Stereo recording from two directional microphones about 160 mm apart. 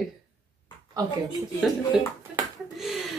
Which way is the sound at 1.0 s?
25° right (ahead or behind).